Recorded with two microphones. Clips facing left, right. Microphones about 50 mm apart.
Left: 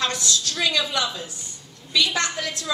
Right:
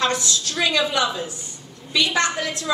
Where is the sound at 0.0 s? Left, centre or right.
Right.